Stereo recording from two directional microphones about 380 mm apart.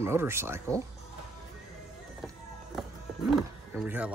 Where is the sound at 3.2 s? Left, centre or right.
Centre.